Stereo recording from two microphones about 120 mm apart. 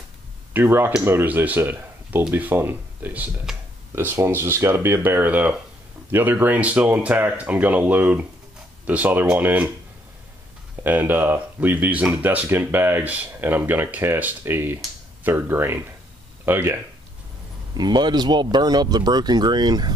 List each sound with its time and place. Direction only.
0.5 s speech: 20° right (ahead or behind)
10.8 s speech: 15° right (ahead or behind)
17.7 s speech: 35° right (ahead or behind)